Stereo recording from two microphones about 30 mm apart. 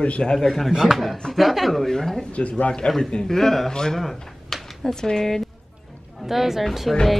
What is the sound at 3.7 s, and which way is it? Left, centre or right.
Speech, left.